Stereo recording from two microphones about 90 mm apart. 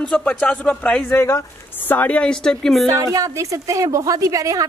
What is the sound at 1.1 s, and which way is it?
Speech, 30° left (ahead or behind).